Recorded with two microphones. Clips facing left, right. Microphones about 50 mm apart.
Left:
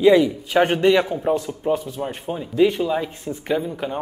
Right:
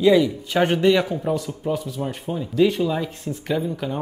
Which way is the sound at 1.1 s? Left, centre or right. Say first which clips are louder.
Left 3 dB; centre.